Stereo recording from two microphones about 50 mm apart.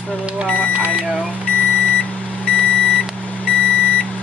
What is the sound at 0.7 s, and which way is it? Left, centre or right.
Speech, right.